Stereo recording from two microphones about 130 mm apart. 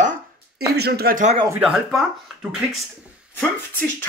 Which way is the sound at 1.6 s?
Centre (ahead or behind).